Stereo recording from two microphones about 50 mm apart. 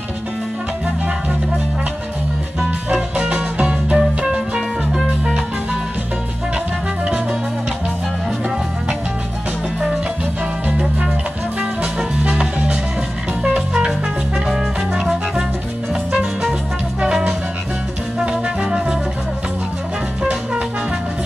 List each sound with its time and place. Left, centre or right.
3.2 s music: right; by 5.3 s centre
11.8 s music: right
18.2 s music: centre